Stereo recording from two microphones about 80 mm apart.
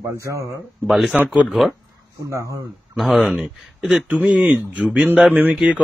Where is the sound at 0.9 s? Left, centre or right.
Centre.